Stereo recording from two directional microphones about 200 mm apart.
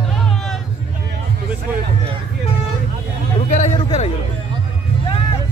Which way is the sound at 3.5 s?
35° left (ahead or behind).